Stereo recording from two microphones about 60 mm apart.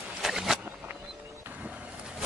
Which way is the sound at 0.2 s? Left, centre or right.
Centre.